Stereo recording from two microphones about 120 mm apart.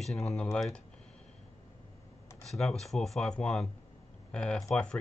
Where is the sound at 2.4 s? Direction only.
Centre (ahead or behind).